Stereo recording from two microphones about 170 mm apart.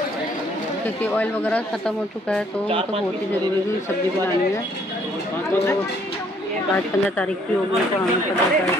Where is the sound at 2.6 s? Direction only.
35° right (ahead or behind).